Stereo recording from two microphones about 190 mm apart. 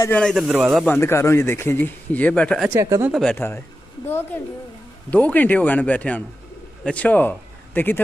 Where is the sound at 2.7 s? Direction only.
15° right (ahead or behind).